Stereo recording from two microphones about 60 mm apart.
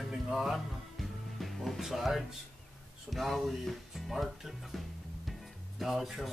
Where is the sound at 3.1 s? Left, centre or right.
Centre.